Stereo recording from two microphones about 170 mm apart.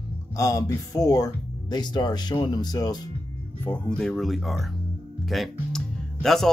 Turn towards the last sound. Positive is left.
turn(degrees=0)  # may be behind; listen again after turning